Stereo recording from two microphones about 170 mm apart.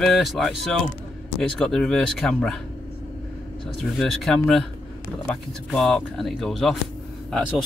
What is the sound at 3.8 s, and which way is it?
Speech, centre (ahead or behind).